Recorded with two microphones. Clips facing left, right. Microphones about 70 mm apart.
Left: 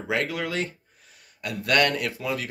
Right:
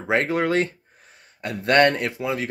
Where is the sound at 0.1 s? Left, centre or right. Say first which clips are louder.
Right 7 dB; right.